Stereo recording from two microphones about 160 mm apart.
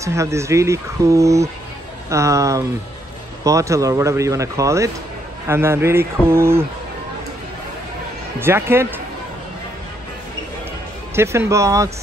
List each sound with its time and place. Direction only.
0.0 s speech: 20° right (ahead or behind)
8.4 s speech: 15° right (ahead or behind)
11.1 s speech: 15° right (ahead or behind)